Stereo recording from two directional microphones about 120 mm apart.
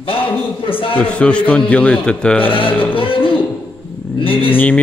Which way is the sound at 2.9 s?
45° left (ahead or behind).